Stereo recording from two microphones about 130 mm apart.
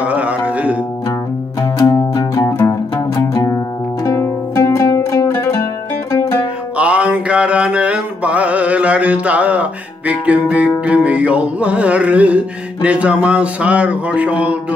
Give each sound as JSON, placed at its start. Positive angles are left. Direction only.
{"t": 0.0, "sound": "music", "side_deg": -10}
{"t": 1.6, "sound": "music", "side_deg": 30}
{"t": 6.8, "sound": "mantra", "side_deg": -10}
{"t": 10.9, "sound": "music", "side_deg": -10}